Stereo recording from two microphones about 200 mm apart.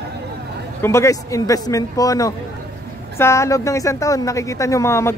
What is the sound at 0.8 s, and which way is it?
Speech, 15° left (ahead or behind).